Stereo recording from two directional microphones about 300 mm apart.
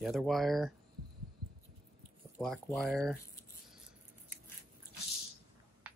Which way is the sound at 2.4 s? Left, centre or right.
Centre.